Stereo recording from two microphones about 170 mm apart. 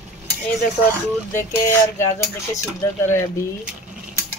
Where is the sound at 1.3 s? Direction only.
15° left (ahead or behind).